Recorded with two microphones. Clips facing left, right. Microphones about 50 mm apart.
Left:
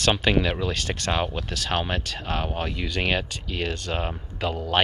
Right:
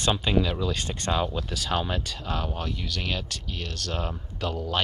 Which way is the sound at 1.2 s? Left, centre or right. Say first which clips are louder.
Left 1 dB; left.